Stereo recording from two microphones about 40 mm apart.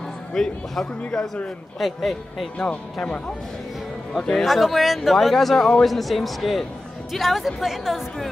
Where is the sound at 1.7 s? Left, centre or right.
Centre.